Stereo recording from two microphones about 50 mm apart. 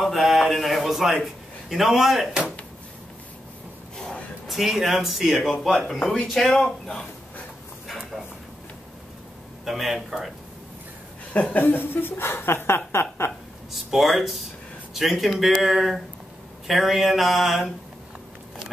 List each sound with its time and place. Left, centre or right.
0.0 s a sound: centre
4.5 s speech: centre
9.7 s speech: centre
11.5 s speech: left
13.8 s speech: centre